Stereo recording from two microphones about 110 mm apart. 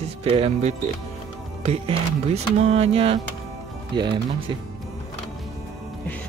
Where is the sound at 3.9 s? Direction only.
45° right (ahead or behind).